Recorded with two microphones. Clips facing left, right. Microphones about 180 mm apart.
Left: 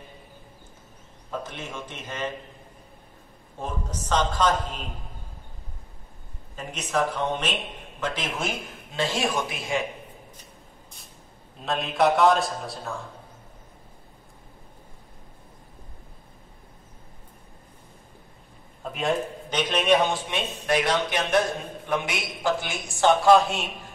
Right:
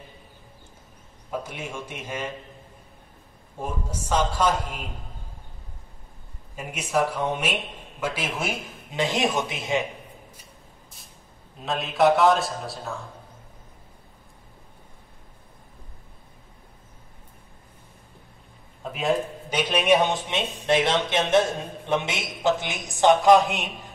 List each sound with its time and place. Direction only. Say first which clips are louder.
1.3 s a man's voice: right 2 dB; 10° right (ahead or behind)
3.5 s a man's voice: right 1 dB; 10° right (ahead or behind)
6.5 s a man's voice: right 2 dB; 10° right (ahead or behind)
11.6 s a man's voice: right 2 dB; centre (ahead or behind)
18.8 s a man's voice: right 1 dB; centre (ahead or behind); by 23.9 s 15° right (ahead or behind)